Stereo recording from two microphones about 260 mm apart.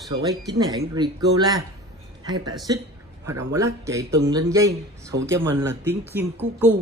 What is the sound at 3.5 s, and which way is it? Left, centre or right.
Speech, centre.